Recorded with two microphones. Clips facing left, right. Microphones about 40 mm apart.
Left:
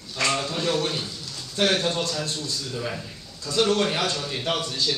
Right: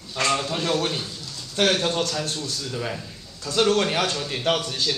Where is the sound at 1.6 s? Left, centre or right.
Right.